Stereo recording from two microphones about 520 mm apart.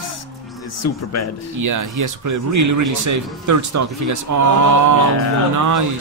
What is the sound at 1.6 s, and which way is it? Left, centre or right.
Speech, right.